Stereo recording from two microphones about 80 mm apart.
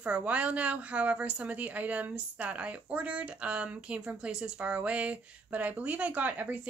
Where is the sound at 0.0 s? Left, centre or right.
Centre.